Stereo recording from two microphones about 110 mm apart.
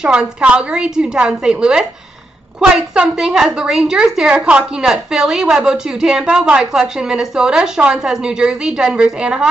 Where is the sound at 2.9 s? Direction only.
5° right (ahead or behind).